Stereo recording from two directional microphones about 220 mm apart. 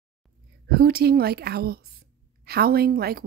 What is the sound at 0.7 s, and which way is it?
A woman's voice, 45° right (ahead or behind).